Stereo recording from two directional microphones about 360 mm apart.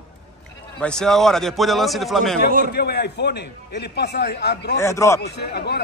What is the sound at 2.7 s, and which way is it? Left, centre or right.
A man's voice, left.